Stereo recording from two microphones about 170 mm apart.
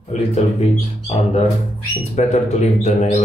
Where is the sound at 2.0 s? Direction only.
40° left (ahead or behind).